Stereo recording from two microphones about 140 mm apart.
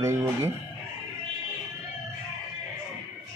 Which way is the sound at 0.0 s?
20° right (ahead or behind).